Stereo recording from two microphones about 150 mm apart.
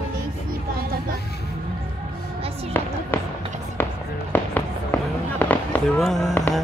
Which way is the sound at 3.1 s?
15° left (ahead or behind).